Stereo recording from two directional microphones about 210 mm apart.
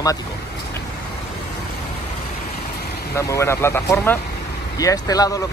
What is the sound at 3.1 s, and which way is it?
Speech, 15° left (ahead or behind).